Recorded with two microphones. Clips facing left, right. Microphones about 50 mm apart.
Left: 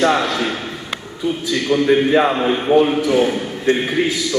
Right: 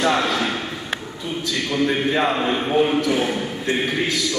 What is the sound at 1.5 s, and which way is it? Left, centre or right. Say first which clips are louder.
A man's voice: left 6 dB; centre.